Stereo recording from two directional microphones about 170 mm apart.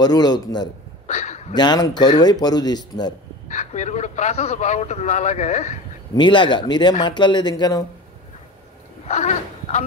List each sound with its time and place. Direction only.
0.0 s speech: 25° left (ahead or behind)
1.0 s a sound: 40° left (ahead or behind)
1.5 s speech: 25° left (ahead or behind)
3.4 s a man's voice: 45° left (ahead or behind)
6.1 s speech: 30° left (ahead or behind)
9.0 s a sound: 45° left (ahead or behind)